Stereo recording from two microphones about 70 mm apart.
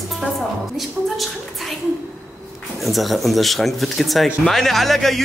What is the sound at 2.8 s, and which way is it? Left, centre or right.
Speech, centre.